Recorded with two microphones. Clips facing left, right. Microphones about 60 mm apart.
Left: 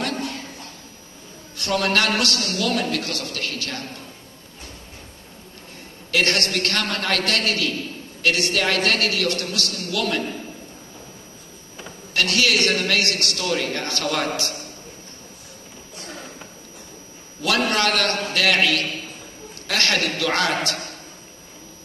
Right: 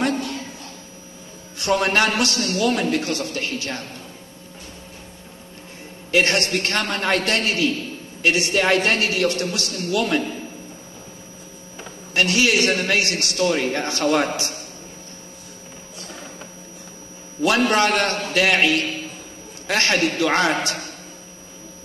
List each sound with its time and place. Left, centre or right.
1.6 s a man's voice: right
6.1 s a man's voice: right
12.1 s a man's voice: right
17.6 s a man's voice: right